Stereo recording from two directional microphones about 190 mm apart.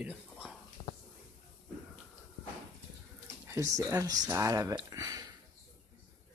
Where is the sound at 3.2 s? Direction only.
15° right (ahead or behind).